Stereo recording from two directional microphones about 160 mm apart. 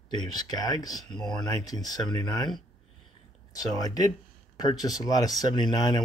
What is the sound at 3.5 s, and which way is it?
Speech, 25° left (ahead or behind).